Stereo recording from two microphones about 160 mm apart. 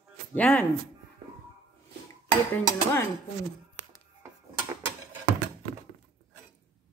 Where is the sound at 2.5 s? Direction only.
15° left (ahead or behind).